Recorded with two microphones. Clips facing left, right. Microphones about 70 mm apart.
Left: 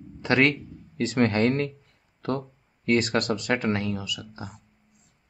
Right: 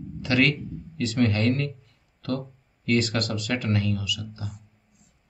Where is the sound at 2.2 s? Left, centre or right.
Left.